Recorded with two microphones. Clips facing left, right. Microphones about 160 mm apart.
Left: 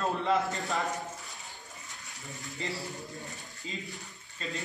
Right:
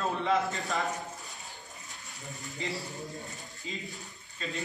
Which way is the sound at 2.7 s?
Centre (ahead or behind).